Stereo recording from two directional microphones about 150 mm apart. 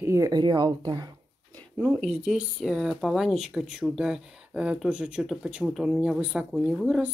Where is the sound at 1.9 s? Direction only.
5° right (ahead or behind).